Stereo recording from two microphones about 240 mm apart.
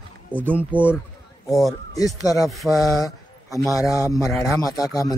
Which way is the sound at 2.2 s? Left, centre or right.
Centre.